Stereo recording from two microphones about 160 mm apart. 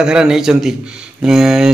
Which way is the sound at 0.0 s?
5° right (ahead or behind).